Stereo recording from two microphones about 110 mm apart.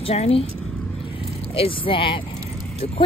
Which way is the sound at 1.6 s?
55° left (ahead or behind).